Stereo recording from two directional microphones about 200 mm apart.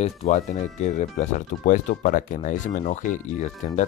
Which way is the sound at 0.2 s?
40° left (ahead or behind).